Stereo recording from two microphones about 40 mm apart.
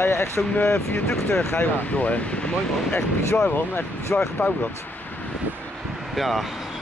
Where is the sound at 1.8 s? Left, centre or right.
Left.